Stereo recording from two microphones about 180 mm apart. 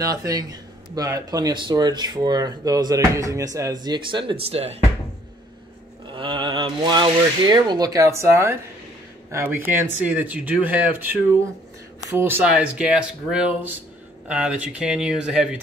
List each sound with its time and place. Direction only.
0.0 s speech: 20° right (ahead or behind)
6.1 s speech: 30° right (ahead or behind); by 11.1 s 10° right (ahead or behind)
12.2 s speech: 10° right (ahead or behind)